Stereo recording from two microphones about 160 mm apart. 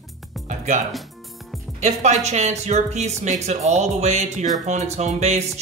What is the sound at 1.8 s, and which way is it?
Speech, 50° right (ahead or behind).